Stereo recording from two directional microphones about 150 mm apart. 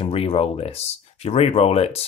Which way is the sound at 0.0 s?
40° left (ahead or behind).